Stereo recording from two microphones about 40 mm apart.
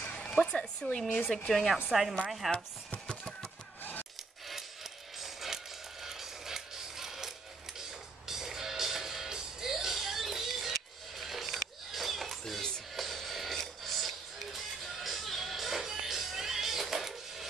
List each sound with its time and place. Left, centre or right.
0.4 s a sound: left
0.9 s speech: left
1.5 s a woman's voice: centre
1.9 s speech: centre
5.2 s music: centre